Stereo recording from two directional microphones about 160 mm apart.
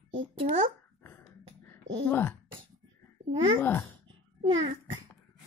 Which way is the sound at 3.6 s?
15° left (ahead or behind).